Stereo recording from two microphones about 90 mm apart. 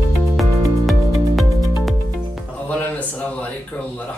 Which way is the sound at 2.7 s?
20° left (ahead or behind).